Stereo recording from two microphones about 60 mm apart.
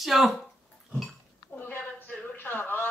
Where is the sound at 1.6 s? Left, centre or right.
Left.